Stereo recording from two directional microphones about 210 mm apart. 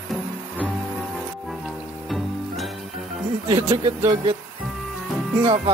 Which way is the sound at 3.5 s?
25° right (ahead or behind).